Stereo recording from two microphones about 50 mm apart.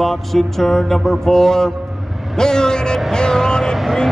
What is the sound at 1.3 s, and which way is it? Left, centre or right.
A man's voice, centre.